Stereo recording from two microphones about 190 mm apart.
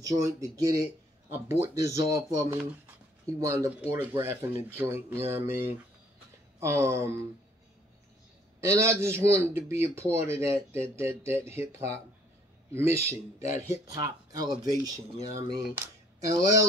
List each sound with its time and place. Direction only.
0.0 s speech: 20° right (ahead or behind)
8.5 s speech: 15° right (ahead or behind)